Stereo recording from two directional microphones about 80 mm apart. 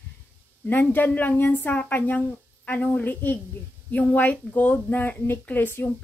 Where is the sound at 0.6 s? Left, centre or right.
Left.